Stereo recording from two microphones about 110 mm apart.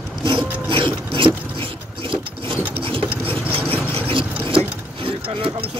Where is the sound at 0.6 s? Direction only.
50° right (ahead or behind).